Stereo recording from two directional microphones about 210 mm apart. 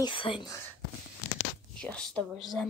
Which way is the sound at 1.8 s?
5° left (ahead or behind).